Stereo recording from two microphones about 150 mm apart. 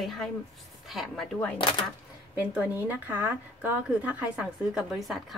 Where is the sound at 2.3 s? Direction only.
10° right (ahead or behind).